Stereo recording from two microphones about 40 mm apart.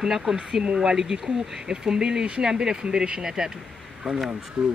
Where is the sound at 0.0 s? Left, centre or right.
Centre.